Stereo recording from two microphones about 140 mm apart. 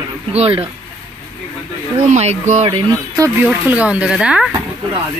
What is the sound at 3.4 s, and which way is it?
Speech, 10° right (ahead or behind).